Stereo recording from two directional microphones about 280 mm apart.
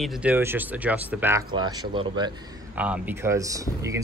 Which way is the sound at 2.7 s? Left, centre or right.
Centre.